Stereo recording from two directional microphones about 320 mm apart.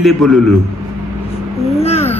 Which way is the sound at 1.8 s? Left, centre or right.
Centre.